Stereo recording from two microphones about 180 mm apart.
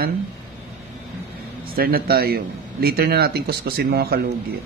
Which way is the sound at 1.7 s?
55° right (ahead or behind).